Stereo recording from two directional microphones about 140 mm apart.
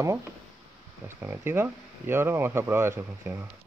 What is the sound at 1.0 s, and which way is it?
Speech, 15° right (ahead or behind).